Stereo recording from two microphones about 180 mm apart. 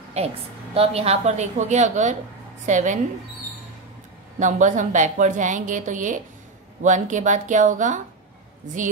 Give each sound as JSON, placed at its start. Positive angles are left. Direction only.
{"t": 0.2, "sound": "a woman's voice", "side_deg": -35}
{"t": 4.4, "sound": "a woman's voice", "side_deg": -45}